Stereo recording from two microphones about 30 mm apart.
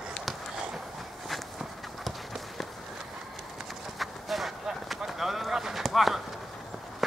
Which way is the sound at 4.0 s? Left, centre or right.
Centre.